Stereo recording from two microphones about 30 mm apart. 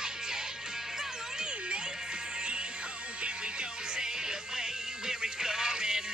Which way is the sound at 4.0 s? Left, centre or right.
Right.